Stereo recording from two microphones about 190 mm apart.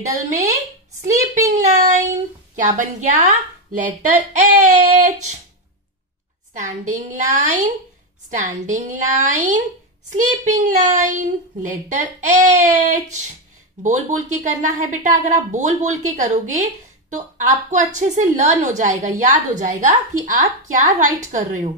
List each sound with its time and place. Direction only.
0.0 s speech: 15° right (ahead or behind)
1.6 s child singing: 40° right (ahead or behind)
2.5 s a child's voice: 40° right (ahead or behind)
6.5 s a child's voice: 40° right (ahead or behind)